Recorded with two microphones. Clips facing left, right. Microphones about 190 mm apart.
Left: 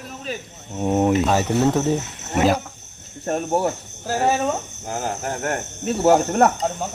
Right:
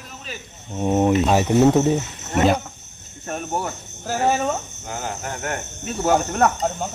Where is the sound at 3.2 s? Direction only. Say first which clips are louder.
Left 6 dB; 35° left (ahead or behind).